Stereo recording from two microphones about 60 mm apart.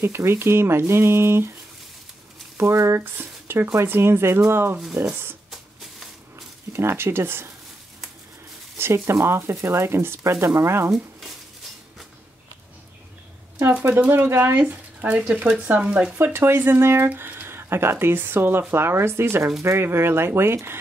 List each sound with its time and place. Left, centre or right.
0.0 s speech: right
2.5 s speech: right
5.5 s music: centre
6.7 s speech: right
8.7 s speech: right
13.8 s speech: right
15.0 s speech: centre
16.3 s speech: right